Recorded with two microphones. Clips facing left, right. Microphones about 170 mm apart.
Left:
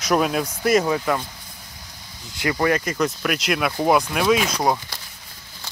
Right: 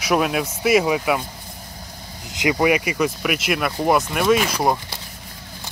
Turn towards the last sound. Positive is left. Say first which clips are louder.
# right 1 dB
turn(degrees=-5)  # may be behind; listen again after turning